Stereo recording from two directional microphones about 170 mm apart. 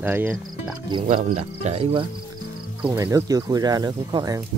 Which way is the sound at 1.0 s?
45° right (ahead or behind).